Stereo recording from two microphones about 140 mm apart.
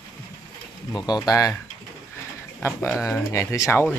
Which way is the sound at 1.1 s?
25° left (ahead or behind).